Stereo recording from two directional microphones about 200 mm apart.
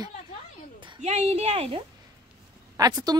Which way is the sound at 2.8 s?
15° right (ahead or behind).